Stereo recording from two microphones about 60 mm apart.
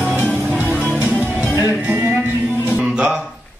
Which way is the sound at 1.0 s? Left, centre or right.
Right.